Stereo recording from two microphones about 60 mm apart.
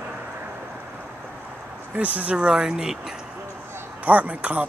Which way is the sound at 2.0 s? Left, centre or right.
Right.